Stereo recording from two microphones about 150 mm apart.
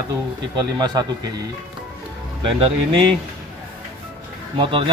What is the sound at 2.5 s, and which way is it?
Speech, 40° right (ahead or behind).